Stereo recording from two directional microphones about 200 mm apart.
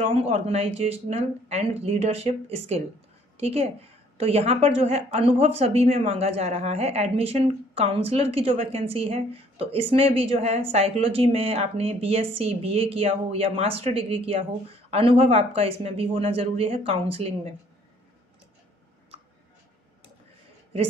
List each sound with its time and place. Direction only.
0.0 s a woman's voice: 30° right (ahead or behind)